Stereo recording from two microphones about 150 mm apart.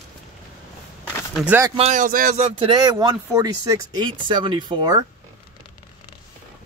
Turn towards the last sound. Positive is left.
turn(degrees=-30)  # may be behind; listen again after turning